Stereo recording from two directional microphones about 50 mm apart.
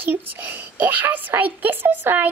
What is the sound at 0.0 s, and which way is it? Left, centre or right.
A child's voice, right.